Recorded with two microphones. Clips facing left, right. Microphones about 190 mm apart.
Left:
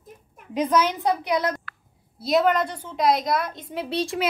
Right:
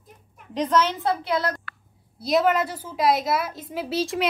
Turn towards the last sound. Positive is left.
turn(degrees=0)  # may be behind; listen again after turning